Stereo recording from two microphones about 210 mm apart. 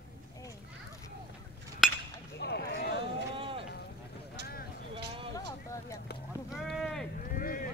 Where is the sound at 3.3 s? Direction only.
25° right (ahead or behind).